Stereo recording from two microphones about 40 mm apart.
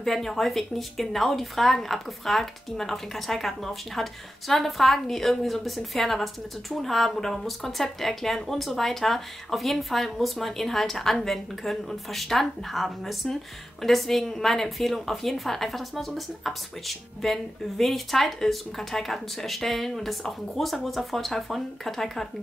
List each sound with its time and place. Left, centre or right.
0.0 s speech: centre